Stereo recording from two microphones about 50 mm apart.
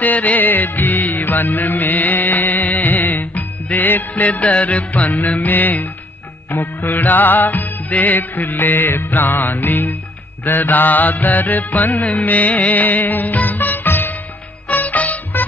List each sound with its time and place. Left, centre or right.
0.0 s music: left